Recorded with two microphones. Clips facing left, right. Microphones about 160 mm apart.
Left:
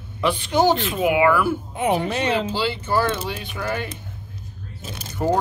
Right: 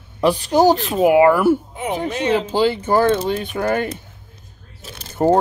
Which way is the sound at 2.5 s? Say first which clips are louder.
Right 6 dB; 50° right (ahead or behind).